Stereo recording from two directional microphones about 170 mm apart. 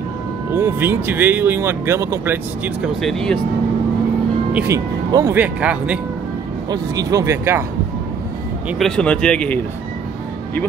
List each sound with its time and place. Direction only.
0.5 s speech: 15° right (ahead or behind)
3.0 s speech: centre (ahead or behind)
4.5 s speech: 5° right (ahead or behind)
4.7 s speech: 20° right (ahead or behind)
6.7 s speech: 20° right (ahead or behind)
8.6 s speech: centre (ahead or behind)